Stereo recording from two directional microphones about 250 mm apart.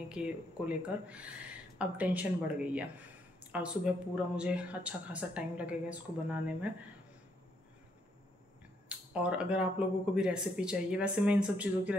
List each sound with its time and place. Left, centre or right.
0.1 s speech: centre
8.8 s speech: centre